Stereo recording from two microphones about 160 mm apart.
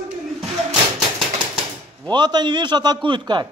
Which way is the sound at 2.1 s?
25° right (ahead or behind).